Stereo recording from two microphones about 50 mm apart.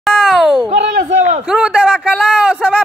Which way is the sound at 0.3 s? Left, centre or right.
Centre.